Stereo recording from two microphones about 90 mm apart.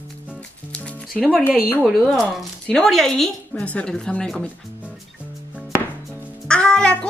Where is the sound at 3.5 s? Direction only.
15° left (ahead or behind).